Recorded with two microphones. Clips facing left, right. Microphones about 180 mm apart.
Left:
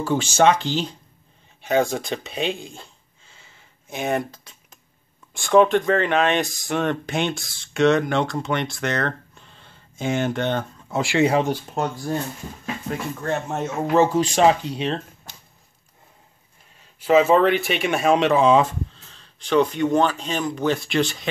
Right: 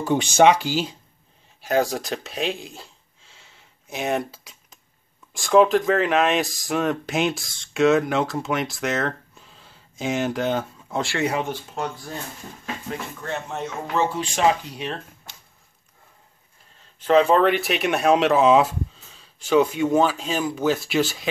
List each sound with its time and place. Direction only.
0.0 s speech: 20° right (ahead or behind); by 11.0 s 5° right (ahead or behind)
11.0 s speech: 15° left (ahead or behind)
11.2 s speech: 35° left (ahead or behind)
13.2 s speech: 45° left (ahead or behind); by 15.0 s 25° left (ahead or behind)
17.0 s speech: 5° left (ahead or behind)